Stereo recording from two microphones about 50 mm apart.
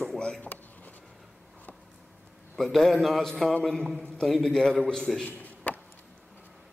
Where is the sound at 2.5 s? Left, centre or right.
Centre.